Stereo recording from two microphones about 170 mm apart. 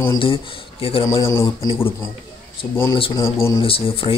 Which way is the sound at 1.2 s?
15° left (ahead or behind).